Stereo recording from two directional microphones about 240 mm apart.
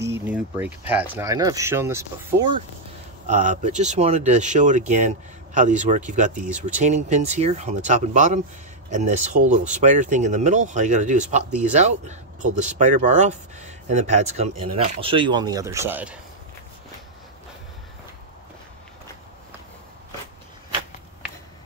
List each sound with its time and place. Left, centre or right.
0.0 s speech: centre
3.3 s speech: right
14.5 s speech: right
14.8 s speech: right; by 16.2 s centre